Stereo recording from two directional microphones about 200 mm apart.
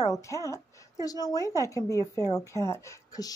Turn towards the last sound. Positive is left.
turn(degrees=15)  # may be behind; listen again after turning